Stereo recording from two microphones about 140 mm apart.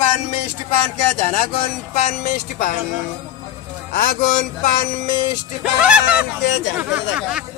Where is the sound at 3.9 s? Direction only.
90° left.